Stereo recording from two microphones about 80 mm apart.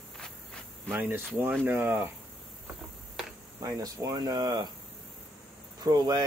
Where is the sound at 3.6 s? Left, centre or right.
Right.